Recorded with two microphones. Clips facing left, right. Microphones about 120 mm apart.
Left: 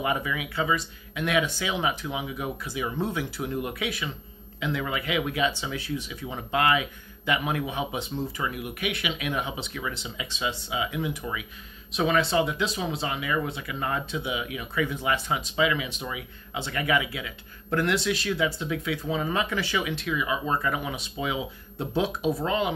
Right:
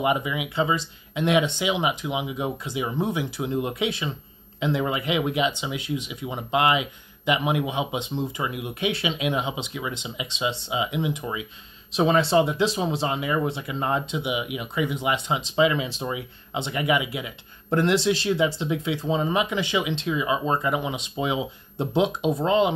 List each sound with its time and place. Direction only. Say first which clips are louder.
0.0 s speech: right 4 dB; 20° right (ahead or behind)